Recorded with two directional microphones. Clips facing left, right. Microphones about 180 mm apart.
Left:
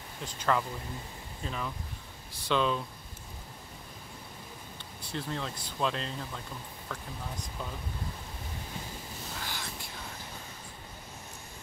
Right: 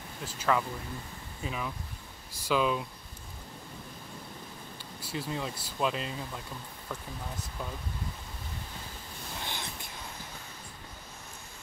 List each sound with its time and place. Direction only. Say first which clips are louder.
0.2 s speech: right 1 dB; 5° right (ahead or behind)
5.0 s speech: right 1 dB; 5° right (ahead or behind)
9.4 s a sound: right 3 dB; 20° right (ahead or behind)